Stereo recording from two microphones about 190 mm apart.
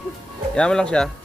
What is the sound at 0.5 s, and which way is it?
Speech, 5° left (ahead or behind).